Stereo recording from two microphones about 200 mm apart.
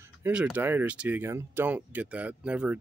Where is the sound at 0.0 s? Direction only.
10° right (ahead or behind).